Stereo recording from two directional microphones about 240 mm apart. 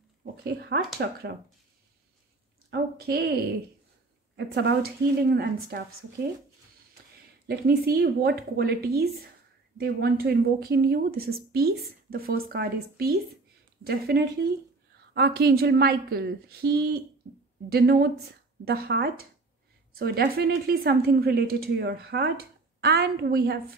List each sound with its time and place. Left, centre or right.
0.4 s a woman's voice: right
2.7 s a woman's voice: right
4.4 s a woman's voice: right
7.4 s a woman's voice: right